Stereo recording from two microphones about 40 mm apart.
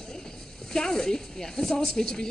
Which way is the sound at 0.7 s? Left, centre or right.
Centre.